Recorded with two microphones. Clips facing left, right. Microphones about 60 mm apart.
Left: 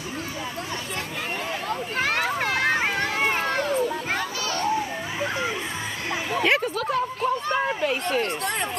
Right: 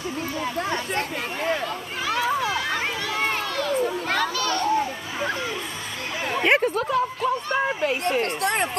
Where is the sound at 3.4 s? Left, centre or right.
Left.